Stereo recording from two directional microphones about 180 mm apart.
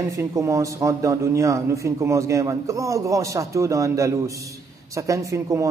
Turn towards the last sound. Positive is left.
turn(degrees=-15)  # may be behind; listen again after turning